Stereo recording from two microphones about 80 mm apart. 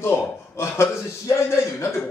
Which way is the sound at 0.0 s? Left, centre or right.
Left.